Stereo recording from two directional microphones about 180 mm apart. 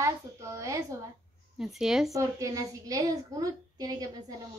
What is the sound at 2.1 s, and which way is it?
A woman's voice, 15° right (ahead or behind).